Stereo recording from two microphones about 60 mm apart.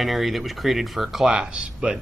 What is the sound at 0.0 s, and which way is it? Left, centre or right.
Speech, centre.